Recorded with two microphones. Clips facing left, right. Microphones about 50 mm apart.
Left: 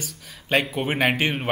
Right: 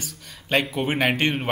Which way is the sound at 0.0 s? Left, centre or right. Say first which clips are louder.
Left 1 dB; centre.